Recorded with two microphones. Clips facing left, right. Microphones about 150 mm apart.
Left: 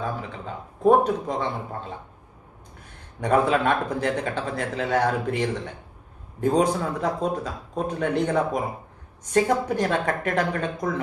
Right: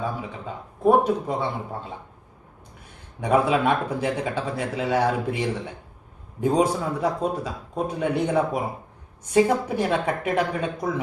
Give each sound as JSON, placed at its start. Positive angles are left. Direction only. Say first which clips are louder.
{"t": 0.8, "sound": "a man's voice", "louder": "even", "side_deg": -10}
{"t": 3.2, "sound": "a man's voice", "louder": "even", "side_deg": -10}